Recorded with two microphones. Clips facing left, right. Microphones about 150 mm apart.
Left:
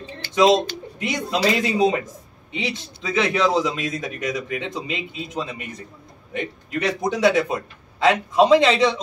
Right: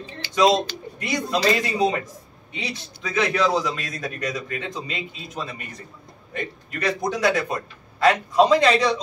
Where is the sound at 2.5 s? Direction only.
25° left (ahead or behind).